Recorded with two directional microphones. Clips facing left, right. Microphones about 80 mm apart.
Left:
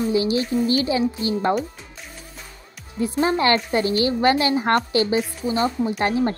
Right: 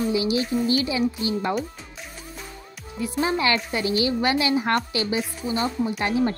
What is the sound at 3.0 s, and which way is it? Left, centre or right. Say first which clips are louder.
Speech: left 4 dB; left.